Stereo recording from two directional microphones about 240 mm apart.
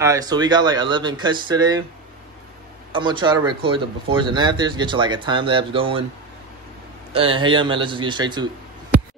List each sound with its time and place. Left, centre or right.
0.0 s speech: centre
2.9 s speech: centre
7.1 s speech: right